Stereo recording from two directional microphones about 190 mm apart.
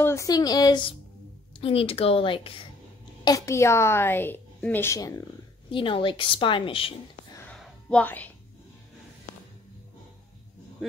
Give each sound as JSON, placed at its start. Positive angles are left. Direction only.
{"t": 0.0, "sound": "a woman's voice", "side_deg": 15}
{"t": 3.3, "sound": "a woman's voice", "side_deg": 15}
{"t": 7.3, "sound": "a sound", "side_deg": 5}